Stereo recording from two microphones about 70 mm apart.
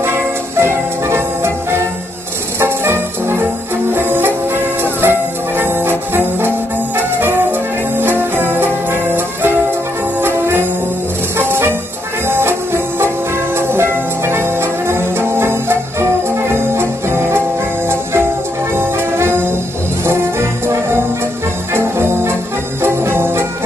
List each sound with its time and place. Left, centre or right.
0.0 s music: right
5.6 s brass instrument: right
7.2 s music: right
18.8 s music: right
20.1 s trombone: right
21.7 s music: right